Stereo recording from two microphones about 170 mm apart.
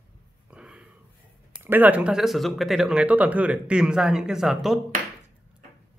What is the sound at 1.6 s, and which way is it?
Speech, 10° right (ahead or behind).